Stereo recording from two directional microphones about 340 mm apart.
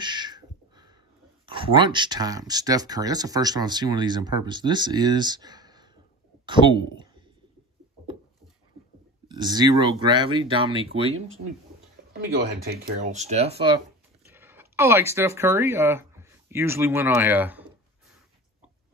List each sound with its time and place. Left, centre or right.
0.0 s a sound: centre
1.4 s speech: centre
9.3 s speech: centre
11.1 s speech: right
12.1 s speech: right
14.2 s speech: centre